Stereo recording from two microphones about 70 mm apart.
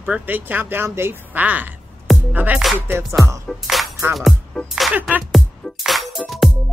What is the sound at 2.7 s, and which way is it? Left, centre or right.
Music, right.